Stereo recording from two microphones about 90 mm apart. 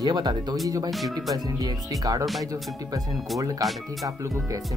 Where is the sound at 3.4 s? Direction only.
40° right (ahead or behind).